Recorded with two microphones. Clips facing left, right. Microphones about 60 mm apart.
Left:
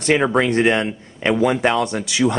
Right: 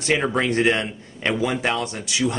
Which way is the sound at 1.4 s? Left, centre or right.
Left.